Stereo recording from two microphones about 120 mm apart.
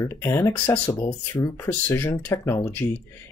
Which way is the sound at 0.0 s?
25° left (ahead or behind).